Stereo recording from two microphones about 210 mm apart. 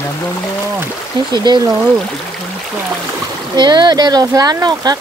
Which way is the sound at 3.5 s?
20° right (ahead or behind).